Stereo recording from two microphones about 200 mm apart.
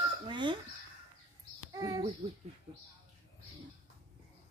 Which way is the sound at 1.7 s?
20° right (ahead or behind).